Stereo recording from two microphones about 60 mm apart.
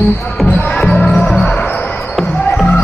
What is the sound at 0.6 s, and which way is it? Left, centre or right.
Basketball bounce, centre.